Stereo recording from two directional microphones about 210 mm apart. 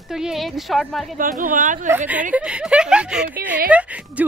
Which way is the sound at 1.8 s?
10° right (ahead or behind).